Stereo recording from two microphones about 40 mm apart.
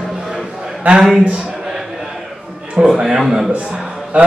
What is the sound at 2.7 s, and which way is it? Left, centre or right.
Speech, centre.